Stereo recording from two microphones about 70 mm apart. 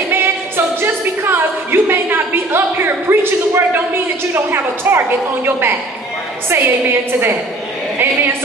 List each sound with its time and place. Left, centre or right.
0.1 s a woman's voice: right